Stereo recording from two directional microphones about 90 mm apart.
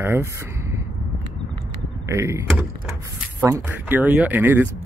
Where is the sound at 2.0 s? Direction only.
30° right (ahead or behind).